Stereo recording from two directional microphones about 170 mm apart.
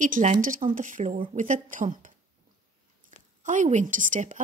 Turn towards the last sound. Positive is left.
turn(degrees=-50)  # may be behind; listen again after turning